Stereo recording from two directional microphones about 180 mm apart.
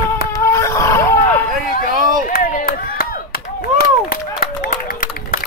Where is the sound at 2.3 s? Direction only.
50° left (ahead or behind).